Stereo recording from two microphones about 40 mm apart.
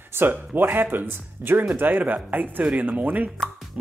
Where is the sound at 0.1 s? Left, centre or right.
Right.